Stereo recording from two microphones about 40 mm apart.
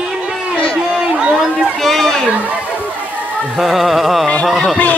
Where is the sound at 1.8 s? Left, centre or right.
Centre.